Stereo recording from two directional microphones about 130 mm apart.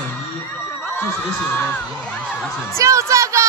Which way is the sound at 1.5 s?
15° left (ahead or behind).